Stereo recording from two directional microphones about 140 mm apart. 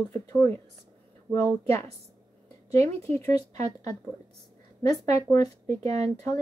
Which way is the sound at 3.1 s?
20° left (ahead or behind).